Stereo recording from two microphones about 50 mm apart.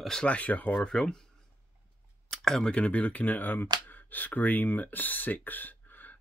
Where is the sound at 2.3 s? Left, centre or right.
Centre.